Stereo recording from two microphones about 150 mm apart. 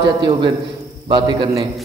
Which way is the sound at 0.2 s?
35° right (ahead or behind).